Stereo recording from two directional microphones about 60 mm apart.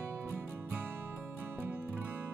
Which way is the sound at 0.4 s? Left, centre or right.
Right.